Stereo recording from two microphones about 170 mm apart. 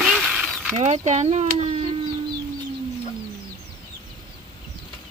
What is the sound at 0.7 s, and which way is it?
Speech, 40° right (ahead or behind).